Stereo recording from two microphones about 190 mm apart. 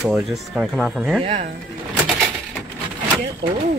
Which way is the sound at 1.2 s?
35° right (ahead or behind).